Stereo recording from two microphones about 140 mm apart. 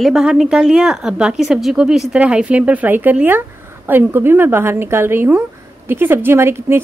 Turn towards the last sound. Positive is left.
turn(degrees=-15)  # may be behind; listen again after turning